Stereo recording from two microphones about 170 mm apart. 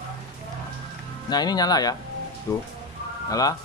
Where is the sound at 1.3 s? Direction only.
25° left (ahead or behind).